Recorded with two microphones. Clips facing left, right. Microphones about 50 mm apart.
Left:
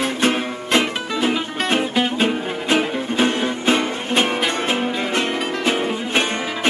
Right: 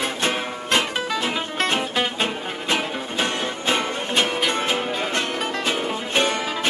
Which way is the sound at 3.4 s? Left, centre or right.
Centre.